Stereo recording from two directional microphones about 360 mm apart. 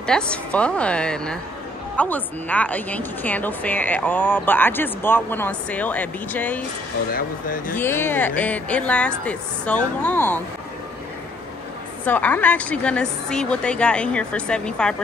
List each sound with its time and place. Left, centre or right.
0.0 s a woman's voice: centre
7.1 s speech: left
7.7 s a woman's voice: centre
12.0 s a woman's voice: centre